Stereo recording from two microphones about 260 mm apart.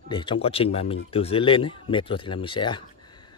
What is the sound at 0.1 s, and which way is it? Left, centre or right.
A man's voice, centre.